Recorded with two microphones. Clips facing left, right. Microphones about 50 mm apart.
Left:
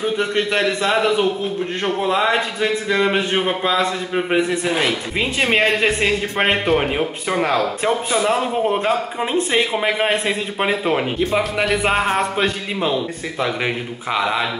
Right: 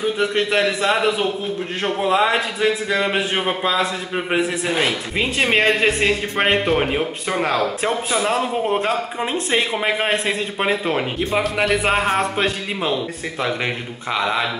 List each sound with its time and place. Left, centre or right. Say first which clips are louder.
0.0 s a man's voice: even; centre